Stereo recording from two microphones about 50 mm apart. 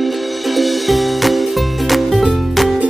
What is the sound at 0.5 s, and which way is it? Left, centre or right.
Music, centre.